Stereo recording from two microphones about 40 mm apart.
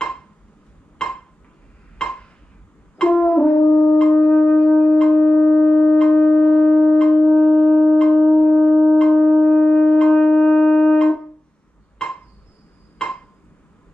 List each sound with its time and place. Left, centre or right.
0.9 s a sound: centre
3.0 s brass instrument: left
3.5 s brass instrument: left
3.8 s wind instrument: left
12.0 s insect: centre
12.9 s a sound: left